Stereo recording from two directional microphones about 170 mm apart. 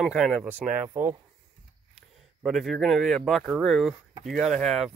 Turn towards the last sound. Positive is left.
turn(degrees=0)  # may be behind; listen again after turning